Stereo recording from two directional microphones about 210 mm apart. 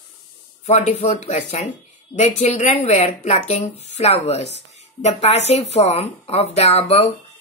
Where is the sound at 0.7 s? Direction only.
30° left (ahead or behind).